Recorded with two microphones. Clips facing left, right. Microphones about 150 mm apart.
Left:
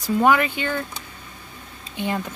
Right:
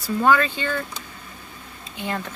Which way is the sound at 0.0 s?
15° left (ahead or behind).